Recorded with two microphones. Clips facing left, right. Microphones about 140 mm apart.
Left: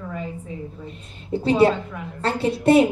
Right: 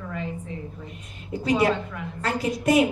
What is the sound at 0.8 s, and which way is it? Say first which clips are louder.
A woman's voice: left 4 dB; 30° left (ahead or behind).